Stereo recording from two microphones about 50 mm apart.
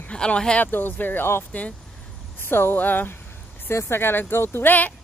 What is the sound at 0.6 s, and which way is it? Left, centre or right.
Speech, left.